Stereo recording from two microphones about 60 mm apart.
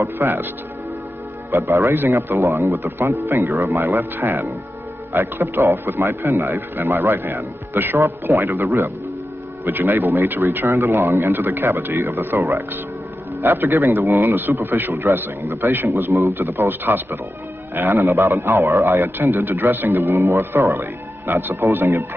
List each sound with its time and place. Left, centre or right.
0.0 s a man's voice: right
1.6 s a man's voice: right
16.1 s a man's voice: right
16.3 s a man's voice: right
18.0 s a man's voice: right